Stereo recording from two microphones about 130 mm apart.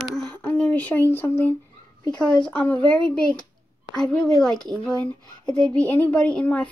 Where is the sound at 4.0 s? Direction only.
5° left (ahead or behind).